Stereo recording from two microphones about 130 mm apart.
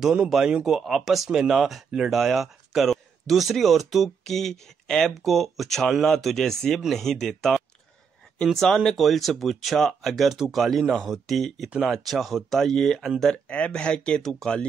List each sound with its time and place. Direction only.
0.0 s speech: 5° right (ahead or behind)